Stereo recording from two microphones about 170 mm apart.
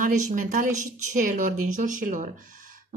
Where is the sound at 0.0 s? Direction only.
50° right (ahead or behind).